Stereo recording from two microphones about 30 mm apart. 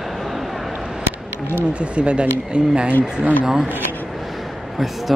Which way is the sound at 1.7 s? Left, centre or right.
Right.